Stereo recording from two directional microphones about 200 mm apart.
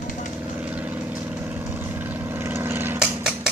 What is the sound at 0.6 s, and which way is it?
Vehicle, 10° right (ahead or behind).